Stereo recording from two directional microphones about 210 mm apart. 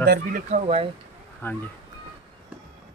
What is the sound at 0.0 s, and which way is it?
Speech, 50° right (ahead or behind).